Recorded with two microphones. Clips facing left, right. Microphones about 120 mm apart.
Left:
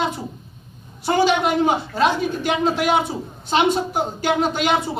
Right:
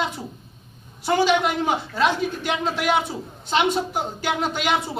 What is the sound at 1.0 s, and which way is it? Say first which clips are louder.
Speech: left 2 dB; 35° left (ahead or behind).